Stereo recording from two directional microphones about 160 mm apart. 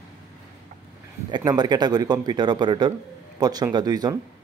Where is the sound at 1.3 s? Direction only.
25° right (ahead or behind).